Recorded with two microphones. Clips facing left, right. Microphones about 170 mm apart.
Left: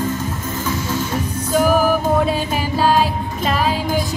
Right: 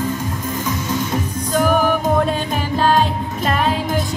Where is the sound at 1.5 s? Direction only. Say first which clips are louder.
Left 1 dB; 5° left (ahead or behind).